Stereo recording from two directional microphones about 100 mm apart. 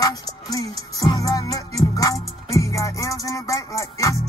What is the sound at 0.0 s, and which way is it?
Music, 40° left (ahead or behind).